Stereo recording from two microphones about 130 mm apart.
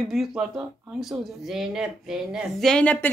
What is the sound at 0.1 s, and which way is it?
Speech, 5° right (ahead or behind).